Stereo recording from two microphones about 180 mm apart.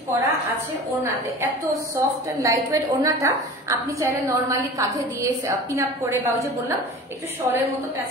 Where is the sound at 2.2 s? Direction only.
15° right (ahead or behind).